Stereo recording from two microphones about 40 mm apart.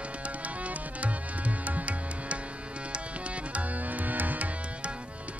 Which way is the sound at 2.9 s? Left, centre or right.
Right.